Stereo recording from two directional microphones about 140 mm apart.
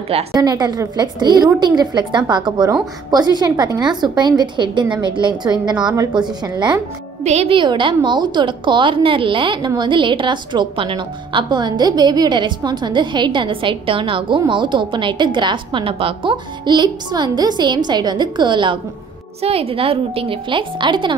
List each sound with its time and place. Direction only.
0.3 s a woman's voice: 25° right (ahead or behind)
7.2 s speech: 50° right (ahead or behind)
7.5 s a woman's voice: 35° right (ahead or behind)